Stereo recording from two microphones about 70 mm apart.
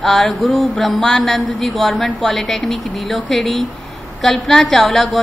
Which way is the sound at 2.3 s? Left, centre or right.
Centre.